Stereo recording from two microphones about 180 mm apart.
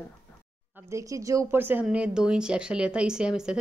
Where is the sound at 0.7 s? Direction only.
15° right (ahead or behind).